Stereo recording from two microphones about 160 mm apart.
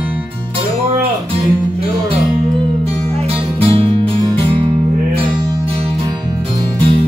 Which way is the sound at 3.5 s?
35° right (ahead or behind).